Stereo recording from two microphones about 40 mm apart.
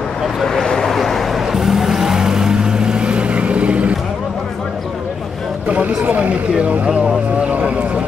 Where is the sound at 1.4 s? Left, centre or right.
Centre; by 3.9 s right.